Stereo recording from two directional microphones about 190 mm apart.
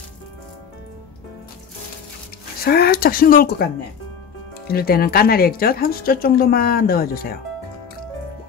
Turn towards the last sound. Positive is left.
turn(degrees=50)  # may be behind; listen again after turning